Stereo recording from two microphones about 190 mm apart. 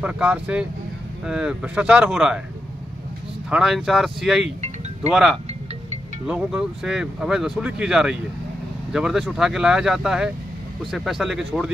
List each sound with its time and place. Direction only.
0.0 s speech: 5° right (ahead or behind)
3.4 s speech: 5° right (ahead or behind)
4.6 s music: 35° right (ahead or behind)
5.1 s speech: 5° right (ahead or behind)